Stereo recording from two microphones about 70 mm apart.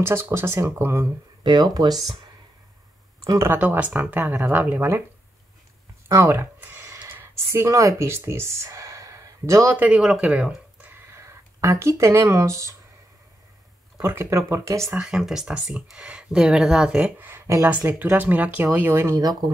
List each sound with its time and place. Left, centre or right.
0.0 s speech: right
1.4 s speech: right
3.5 s speech: right
6.0 s speech: right
6.6 s a sound: right
7.6 s speech: right
9.8 s speech: centre
11.1 s a sound: right
12.0 s speech: right
13.9 s speech: right
14.5 s speech: right
15.0 s speech: centre
17.2 s a sound: right
17.6 s speech: right